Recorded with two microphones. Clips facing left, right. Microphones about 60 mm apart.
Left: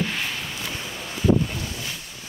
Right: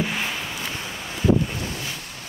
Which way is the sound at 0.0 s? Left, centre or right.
Centre.